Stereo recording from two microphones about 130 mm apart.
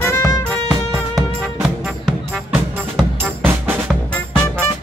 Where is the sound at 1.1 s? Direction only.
5° right (ahead or behind).